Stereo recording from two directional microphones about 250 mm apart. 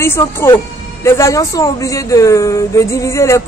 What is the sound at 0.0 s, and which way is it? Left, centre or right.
Speech, centre.